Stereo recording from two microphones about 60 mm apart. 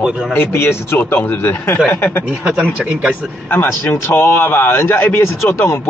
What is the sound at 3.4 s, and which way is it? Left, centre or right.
Speech, left.